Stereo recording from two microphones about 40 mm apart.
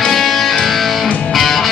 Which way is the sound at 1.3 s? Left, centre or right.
Centre.